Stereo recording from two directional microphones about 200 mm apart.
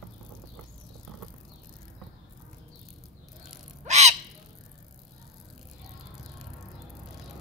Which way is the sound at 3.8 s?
35° right (ahead or behind).